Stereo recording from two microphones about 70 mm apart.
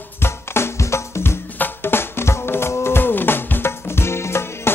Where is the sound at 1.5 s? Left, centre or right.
Left.